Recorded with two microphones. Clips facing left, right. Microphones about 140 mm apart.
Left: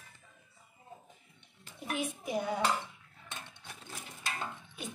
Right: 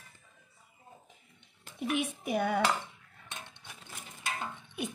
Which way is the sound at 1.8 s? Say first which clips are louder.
Right 4 dB; 70° right (ahead or behind).